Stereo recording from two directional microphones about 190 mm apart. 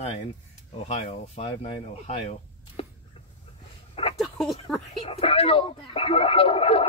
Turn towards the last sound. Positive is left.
turn(degrees=30)  # may be behind; listen again after turning